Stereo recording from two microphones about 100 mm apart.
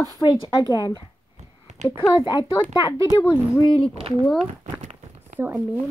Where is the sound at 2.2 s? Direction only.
40° left (ahead or behind).